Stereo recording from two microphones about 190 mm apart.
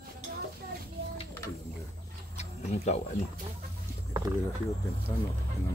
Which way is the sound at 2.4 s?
35° left (ahead or behind).